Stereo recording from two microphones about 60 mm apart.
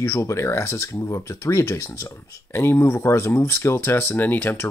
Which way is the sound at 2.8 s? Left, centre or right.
Left.